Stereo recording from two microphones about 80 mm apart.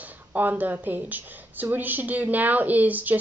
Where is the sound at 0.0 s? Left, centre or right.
Right.